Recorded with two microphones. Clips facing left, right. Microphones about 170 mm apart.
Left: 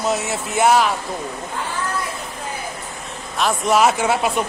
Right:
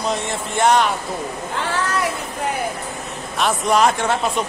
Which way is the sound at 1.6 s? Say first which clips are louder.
Right 4 dB; 80° right.